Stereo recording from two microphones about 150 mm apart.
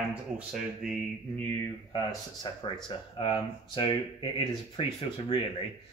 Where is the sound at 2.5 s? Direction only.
30° left (ahead or behind).